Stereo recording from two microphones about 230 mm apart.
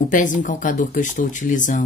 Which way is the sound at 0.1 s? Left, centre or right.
Left.